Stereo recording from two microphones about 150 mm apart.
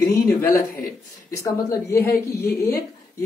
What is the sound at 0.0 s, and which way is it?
Speech, 20° left (ahead or behind).